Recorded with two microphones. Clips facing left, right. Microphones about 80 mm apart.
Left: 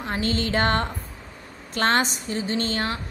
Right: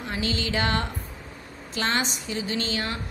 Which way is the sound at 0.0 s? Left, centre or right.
Left.